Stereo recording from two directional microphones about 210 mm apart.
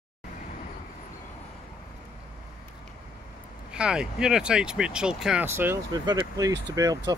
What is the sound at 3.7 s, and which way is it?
Speech, 5° right (ahead or behind).